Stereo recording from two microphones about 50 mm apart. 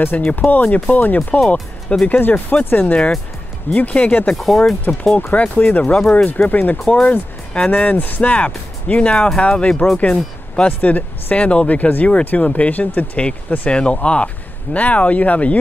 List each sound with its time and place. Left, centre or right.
0.0 s speech: left
3.8 s speech: left
4.4 s speech: centre
5.3 s speech: left
9.1 s speech: centre
9.4 s speech: left
10.8 s speech: left